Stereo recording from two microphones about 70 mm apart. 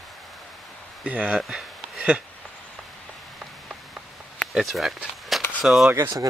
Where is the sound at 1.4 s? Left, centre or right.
Centre.